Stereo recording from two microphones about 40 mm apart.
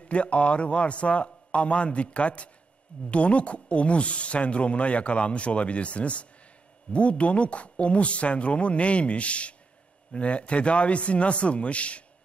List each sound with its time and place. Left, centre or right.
0.1 s speech: left